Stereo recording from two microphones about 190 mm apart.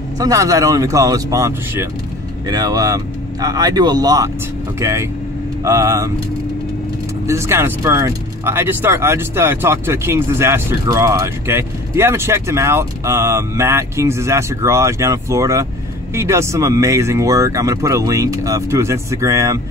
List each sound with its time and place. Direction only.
0.2 s speech: 15° right (ahead or behind)
7.2 s speech: 15° right (ahead or behind)